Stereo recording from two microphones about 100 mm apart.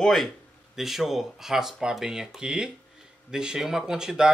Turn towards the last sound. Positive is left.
turn(degrees=-5)  # may be behind; listen again after turning